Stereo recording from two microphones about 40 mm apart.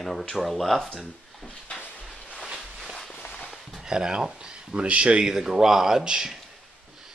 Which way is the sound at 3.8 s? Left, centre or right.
Centre.